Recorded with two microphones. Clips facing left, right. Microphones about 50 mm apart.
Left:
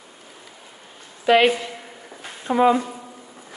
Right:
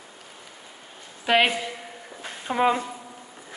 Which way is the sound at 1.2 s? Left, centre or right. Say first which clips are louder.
Left 5 dB; centre.